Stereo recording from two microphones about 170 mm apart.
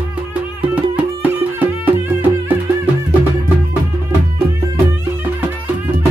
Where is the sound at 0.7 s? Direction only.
10° right (ahead or behind).